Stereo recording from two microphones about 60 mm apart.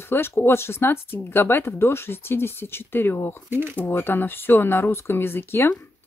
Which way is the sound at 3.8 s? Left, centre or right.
Left.